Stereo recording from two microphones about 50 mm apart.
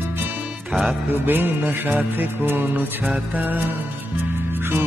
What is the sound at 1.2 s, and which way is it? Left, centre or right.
Music, right.